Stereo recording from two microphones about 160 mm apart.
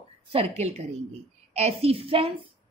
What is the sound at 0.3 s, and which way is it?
A woman's voice, 40° right (ahead or behind).